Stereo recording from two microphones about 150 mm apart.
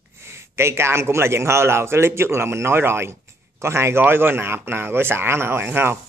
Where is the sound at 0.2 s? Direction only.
15° right (ahead or behind).